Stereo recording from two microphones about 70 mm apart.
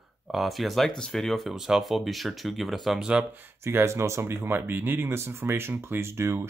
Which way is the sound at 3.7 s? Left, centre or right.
Right.